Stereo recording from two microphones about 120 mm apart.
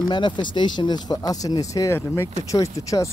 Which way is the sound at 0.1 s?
40° left (ahead or behind).